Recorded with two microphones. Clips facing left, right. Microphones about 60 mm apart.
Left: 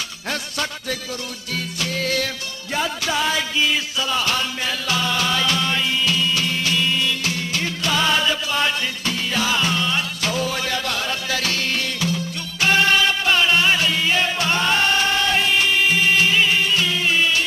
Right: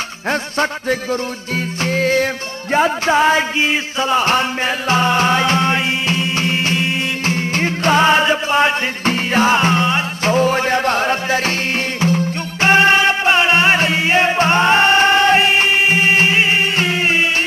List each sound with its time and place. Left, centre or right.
0.3 s music: right